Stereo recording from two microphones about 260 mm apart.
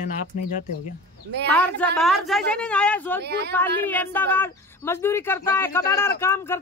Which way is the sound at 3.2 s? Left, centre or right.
Right.